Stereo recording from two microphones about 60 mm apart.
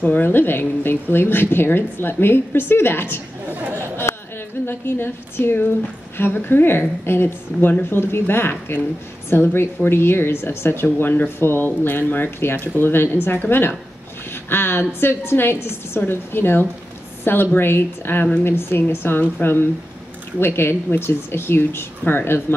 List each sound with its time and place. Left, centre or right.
0.0 s speech: left
3.7 s a sound: left
4.6 s speech: left